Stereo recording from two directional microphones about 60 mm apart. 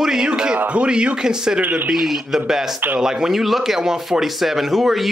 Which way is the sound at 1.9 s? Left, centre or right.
Centre.